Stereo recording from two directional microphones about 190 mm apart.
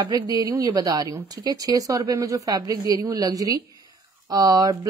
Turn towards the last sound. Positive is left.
turn(degrees=-20)  # may be behind; listen again after turning